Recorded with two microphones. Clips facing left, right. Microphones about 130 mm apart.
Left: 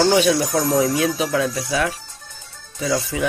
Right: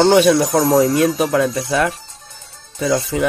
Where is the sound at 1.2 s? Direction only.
55° right (ahead or behind).